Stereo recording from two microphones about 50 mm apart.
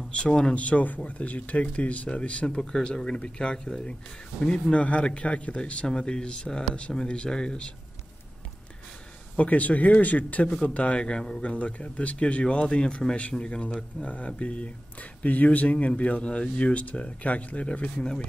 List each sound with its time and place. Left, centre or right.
0.1 s speech: centre
0.6 s speech: left
9.4 s speech: left